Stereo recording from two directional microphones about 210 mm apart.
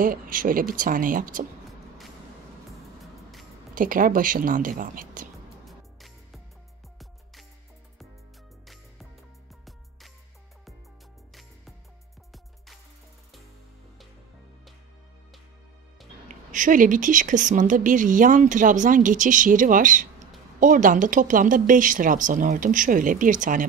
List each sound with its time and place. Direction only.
0.0 s a woman's voice: 40° right (ahead or behind)
3.7 s a woman's voice: 40° right (ahead or behind)
5.7 s music: centre (ahead or behind)
16.3 s a woman's voice: 40° right (ahead or behind)